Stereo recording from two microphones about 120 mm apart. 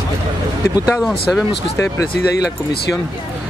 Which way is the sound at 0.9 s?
Centre (ahead or behind).